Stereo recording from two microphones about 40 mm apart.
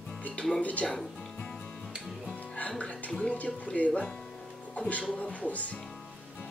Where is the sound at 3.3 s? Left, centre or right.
Left.